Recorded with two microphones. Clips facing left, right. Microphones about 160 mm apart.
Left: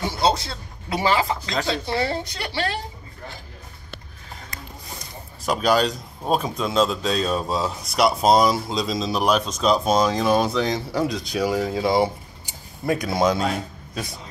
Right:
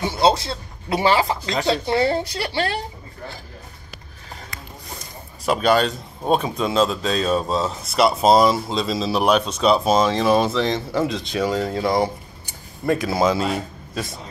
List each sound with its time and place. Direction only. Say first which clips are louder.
0.2 s a woman's voice: right 4 dB; 25° right (ahead or behind)
5.4 s speech: right 2 dB; centre (ahead or behind)